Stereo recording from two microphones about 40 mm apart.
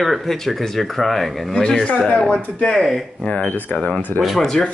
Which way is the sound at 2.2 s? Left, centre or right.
Left.